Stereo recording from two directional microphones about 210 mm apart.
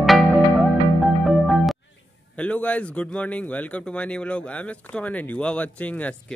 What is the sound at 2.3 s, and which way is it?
Speech, 5° left (ahead or behind).